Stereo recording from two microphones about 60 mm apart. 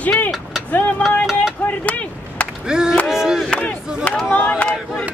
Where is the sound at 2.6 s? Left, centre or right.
Centre.